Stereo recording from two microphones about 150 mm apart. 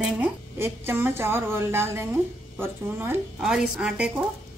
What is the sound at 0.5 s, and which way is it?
A woman's voice, 15° right (ahead or behind).